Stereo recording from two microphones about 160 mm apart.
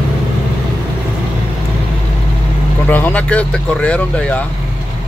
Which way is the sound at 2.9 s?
10° left (ahead or behind).